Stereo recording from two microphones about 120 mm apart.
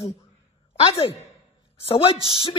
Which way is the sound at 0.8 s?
55° left (ahead or behind).